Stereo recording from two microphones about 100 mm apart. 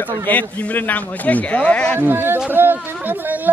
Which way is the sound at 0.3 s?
15° left (ahead or behind).